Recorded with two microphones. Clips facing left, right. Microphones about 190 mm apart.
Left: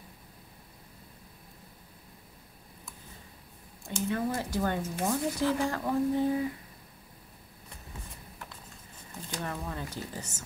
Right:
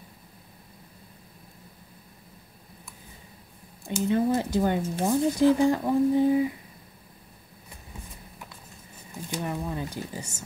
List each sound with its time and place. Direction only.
4.1 s speech: 20° right (ahead or behind)
9.1 s speech: 15° right (ahead or behind)